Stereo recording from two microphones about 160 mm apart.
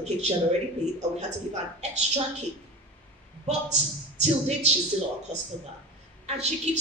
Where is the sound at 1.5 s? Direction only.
45° right (ahead or behind).